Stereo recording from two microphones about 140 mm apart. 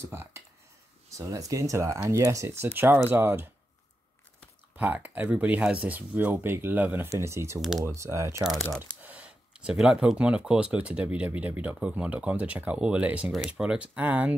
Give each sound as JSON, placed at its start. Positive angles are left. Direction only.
{"t": 0.0, "sound": "speech", "side_deg": -20}
{"t": 4.7, "sound": "speech", "side_deg": -10}